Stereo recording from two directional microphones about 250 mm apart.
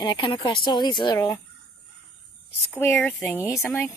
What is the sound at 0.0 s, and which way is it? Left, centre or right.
Speech, centre.